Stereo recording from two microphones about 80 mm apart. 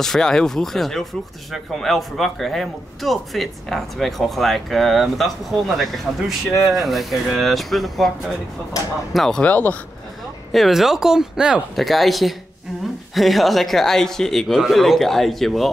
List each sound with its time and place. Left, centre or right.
0.0 s speech: centre
9.4 s speech: centre
10.5 s speech: centre
11.7 s speech: centre